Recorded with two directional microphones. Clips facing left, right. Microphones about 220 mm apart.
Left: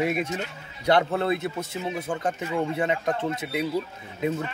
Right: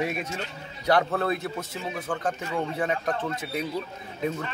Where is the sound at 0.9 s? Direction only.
25° left (ahead or behind).